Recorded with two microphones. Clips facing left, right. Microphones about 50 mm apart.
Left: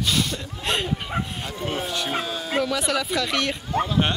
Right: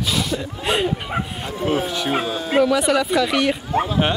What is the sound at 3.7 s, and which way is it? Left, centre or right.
Speech, centre.